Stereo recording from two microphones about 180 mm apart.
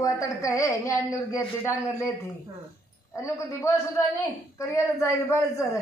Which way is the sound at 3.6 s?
15° left (ahead or behind).